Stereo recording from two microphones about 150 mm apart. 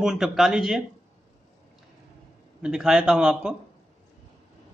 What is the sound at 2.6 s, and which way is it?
Speech, 5° right (ahead or behind).